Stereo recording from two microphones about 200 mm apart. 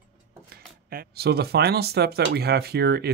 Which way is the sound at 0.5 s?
50° right (ahead or behind).